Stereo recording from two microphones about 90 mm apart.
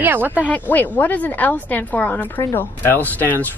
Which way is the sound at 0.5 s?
20° left (ahead or behind).